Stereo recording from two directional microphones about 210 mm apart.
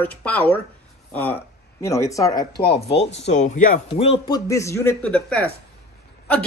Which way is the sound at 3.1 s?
30° left (ahead or behind).